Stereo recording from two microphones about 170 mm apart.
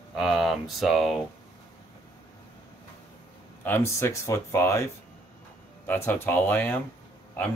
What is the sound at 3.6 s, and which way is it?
Speech, 15° left (ahead or behind).